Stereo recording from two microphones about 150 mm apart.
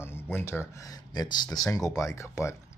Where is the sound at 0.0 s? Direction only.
15° left (ahead or behind).